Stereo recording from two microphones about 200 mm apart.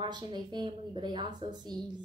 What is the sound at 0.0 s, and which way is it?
A woman's voice, 20° right (ahead or behind).